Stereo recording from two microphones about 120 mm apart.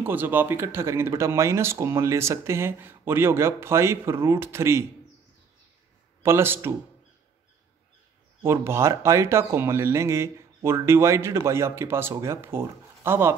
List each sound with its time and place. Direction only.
0.0 s speech: 15° right (ahead or behind)
6.2 s speech: 20° right (ahead or behind)
8.4 s speech: 20° right (ahead or behind)